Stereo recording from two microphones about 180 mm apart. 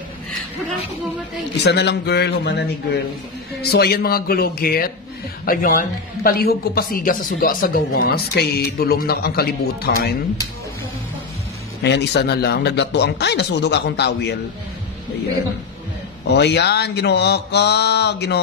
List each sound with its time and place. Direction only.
1.6 s speech: 70° left (ahead or behind)
11.8 s speech: 70° left (ahead or behind)
16.3 s speech: 70° left (ahead or behind)